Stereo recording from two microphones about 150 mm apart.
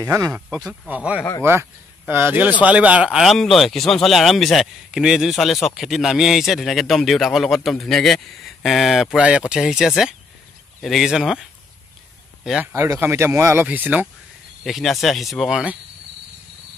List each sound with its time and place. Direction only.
0.0 s speech: 15° right (ahead or behind)
0.5 s speech: 5° right (ahead or behind)
12.7 s speech: 15° right (ahead or behind)